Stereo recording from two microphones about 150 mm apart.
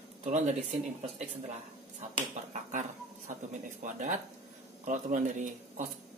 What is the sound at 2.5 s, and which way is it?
Speech, 55° right (ahead or behind).